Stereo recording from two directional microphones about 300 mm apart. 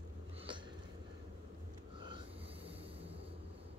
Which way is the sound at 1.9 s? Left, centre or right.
Centre.